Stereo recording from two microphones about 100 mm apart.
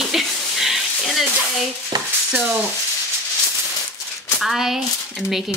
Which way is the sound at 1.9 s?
45° right (ahead or behind).